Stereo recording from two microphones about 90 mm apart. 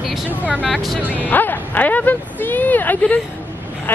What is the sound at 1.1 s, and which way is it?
Speech, 20° left (ahead or behind).